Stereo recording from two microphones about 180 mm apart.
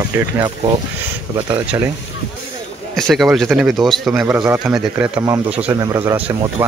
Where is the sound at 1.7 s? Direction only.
15° right (ahead or behind).